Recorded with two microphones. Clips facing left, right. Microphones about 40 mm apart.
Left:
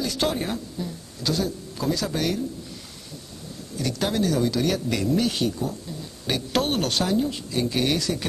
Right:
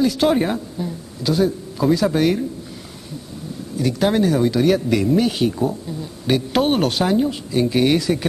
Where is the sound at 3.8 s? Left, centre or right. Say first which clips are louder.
Right 8 dB; centre.